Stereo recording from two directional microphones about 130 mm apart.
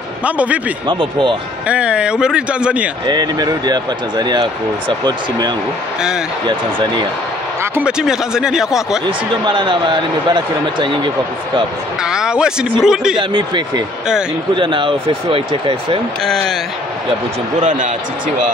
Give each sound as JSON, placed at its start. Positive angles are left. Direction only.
{"t": 0.2, "sound": "speech", "side_deg": -10}
{"t": 0.8, "sound": "a man's voice", "side_deg": -40}
{"t": 1.7, "sound": "speech", "side_deg": -10}
{"t": 3.1, "sound": "a man's voice", "side_deg": -30}
{"t": 7.7, "sound": "speech", "side_deg": -5}
{"t": 9.4, "sound": "a man's voice", "side_deg": -35}
{"t": 12.0, "sound": "speech", "side_deg": -5}
{"t": 13.2, "sound": "a man's voice", "side_deg": -40}
{"t": 17.6, "sound": "speech", "side_deg": -70}